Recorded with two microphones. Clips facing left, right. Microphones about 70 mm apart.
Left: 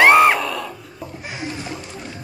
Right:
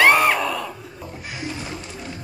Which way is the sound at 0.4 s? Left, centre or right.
Centre.